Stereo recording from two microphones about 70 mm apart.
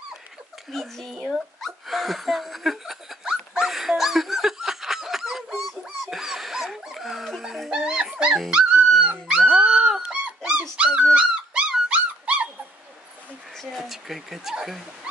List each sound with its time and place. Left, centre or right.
0.7 s a child's voice: centre
1.3 s laughter: centre
7.7 s dog: centre
13.6 s a sound: centre